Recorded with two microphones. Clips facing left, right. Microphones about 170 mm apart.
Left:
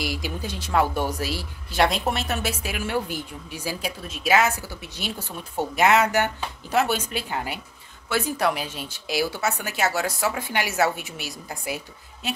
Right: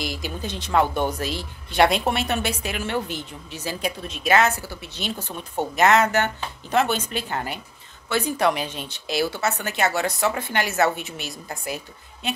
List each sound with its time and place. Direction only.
0.0 s speech: 10° left (ahead or behind)